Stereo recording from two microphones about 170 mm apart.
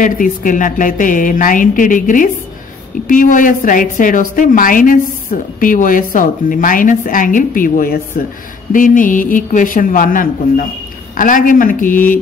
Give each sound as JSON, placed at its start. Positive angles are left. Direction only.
{"t": 0.0, "sound": "a woman's voice", "side_deg": 50}